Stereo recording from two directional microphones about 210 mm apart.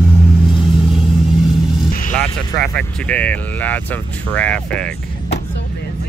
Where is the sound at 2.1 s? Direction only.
5° left (ahead or behind).